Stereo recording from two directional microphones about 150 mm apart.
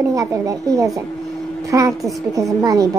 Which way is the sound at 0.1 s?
20° right (ahead or behind).